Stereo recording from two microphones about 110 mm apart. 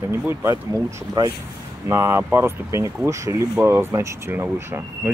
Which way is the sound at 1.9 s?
25° right (ahead or behind).